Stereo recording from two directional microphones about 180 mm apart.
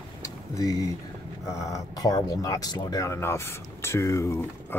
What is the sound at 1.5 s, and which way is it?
Speech, 15° left (ahead or behind).